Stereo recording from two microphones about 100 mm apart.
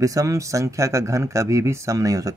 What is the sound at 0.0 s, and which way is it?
Speech, 35° right (ahead or behind).